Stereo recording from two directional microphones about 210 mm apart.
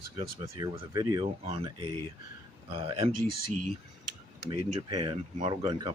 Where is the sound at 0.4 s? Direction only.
20° right (ahead or behind).